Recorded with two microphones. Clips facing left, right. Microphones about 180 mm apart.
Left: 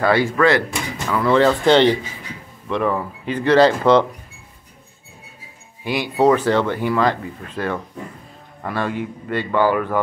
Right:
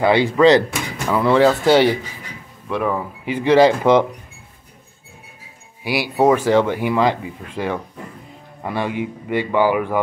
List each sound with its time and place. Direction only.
0.0 s speech: 20° right (ahead or behind)
5.9 s speech: 10° right (ahead or behind)